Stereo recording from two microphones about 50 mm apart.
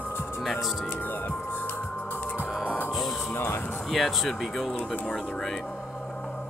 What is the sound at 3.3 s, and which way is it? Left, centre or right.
Speech, left.